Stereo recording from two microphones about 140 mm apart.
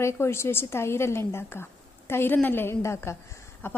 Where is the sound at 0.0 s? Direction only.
20° left (ahead or behind).